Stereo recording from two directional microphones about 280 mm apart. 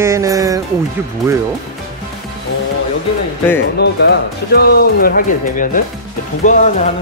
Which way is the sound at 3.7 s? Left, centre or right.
Left.